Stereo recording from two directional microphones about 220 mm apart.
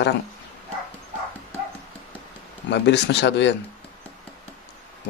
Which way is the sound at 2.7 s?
50° left (ahead or behind).